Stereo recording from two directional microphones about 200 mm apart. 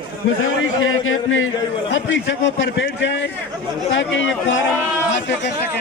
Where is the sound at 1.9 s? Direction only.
65° left (ahead or behind).